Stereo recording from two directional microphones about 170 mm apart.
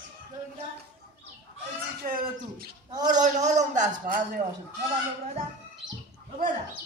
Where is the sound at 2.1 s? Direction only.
60° right (ahead or behind).